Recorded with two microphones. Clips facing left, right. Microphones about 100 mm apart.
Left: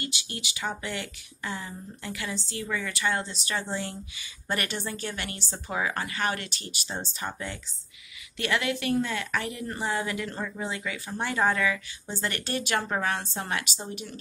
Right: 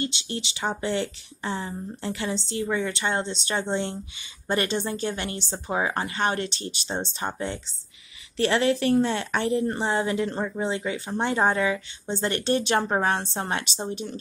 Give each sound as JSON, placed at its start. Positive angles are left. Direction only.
{"t": 0.0, "sound": "speech", "side_deg": -25}